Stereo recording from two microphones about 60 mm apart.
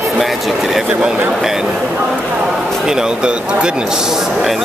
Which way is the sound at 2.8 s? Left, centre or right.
Centre.